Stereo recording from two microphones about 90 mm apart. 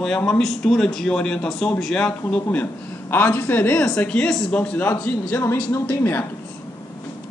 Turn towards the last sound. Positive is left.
turn(degrees=25)  # may be behind; listen again after turning